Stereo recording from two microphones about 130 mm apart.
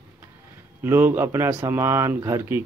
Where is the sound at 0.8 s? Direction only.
15° right (ahead or behind).